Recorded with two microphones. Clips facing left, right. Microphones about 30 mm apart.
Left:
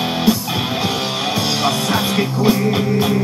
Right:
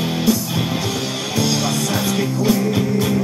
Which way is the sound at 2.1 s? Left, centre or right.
Left.